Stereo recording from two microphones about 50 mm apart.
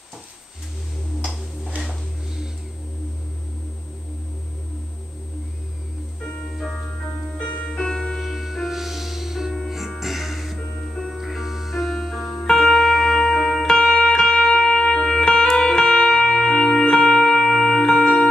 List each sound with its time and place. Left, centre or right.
7.3 s music: left
7.8 s music: centre
8.2 s music: centre